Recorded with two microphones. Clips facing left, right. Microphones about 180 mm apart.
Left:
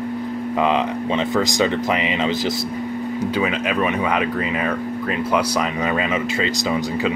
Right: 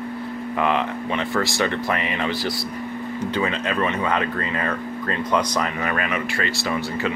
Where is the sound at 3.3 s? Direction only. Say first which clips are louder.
Left 1 dB; 10° left (ahead or behind).